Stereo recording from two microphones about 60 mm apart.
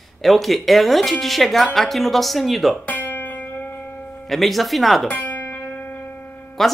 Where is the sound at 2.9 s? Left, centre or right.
Left.